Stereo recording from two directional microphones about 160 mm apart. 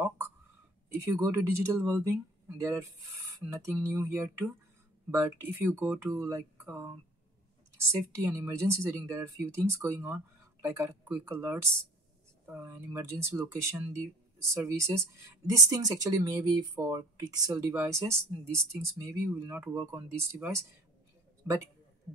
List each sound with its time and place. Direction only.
0.8 s speech: 15° right (ahead or behind)